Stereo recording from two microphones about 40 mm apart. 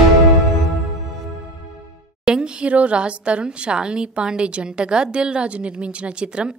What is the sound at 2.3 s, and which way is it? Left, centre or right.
A woman's voice, right.